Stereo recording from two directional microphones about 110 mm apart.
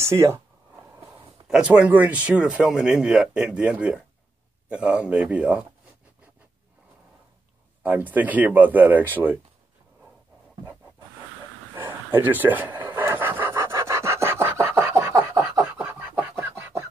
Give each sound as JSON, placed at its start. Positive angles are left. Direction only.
{"t": 0.0, "sound": "speech", "side_deg": -25}
{"t": 1.5, "sound": "speech", "side_deg": -10}
{"t": 7.8, "sound": "speech", "side_deg": -15}
{"t": 11.7, "sound": "pant", "side_deg": -20}
{"t": 15.8, "sound": "a sound", "side_deg": -15}